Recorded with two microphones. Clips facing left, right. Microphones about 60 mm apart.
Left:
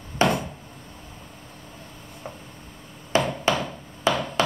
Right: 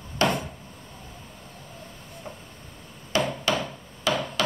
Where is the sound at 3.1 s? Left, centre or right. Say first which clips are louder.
Left 3 dB; left.